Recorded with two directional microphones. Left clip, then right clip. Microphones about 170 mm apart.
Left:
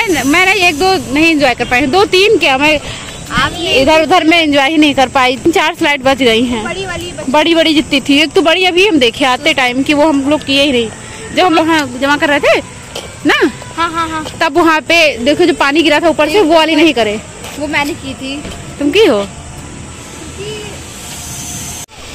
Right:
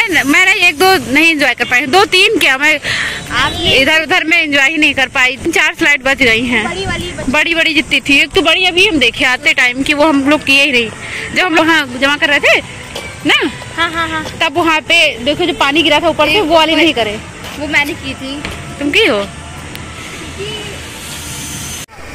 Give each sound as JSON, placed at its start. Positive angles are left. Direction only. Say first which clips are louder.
{"t": 0.0, "sound": "speech", "louder": "right 1 dB", "side_deg": 10}
{"t": 4.0, "sound": "a woman's voice", "louder": "left 3 dB", "side_deg": 20}
{"t": 6.7, "sound": "speech", "louder": "right 1 dB", "side_deg": 0}
{"t": 7.3, "sound": "a woman's voice", "louder": "left 2 dB", "side_deg": 25}
{"t": 8.2, "sound": "speech", "louder": "left 1 dB", "side_deg": 35}
{"t": 9.2, "sound": "a woman's voice", "louder": "even", "side_deg": 20}
{"t": 13.7, "sound": "speech", "louder": "even", "side_deg": 90}
{"t": 14.4, "sound": "a woman's voice", "louder": "left 3 dB", "side_deg": 50}
{"t": 18.9, "sound": "speech", "louder": "left 2 dB", "side_deg": 35}